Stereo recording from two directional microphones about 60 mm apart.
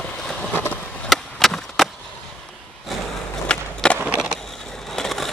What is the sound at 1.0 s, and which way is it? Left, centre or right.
Skateboard, centre.